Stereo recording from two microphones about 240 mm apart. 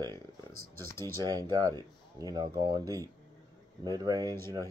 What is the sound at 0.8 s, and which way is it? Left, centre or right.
Speech, centre.